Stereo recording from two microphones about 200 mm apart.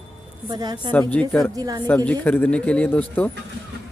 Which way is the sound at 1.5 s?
20° right (ahead or behind).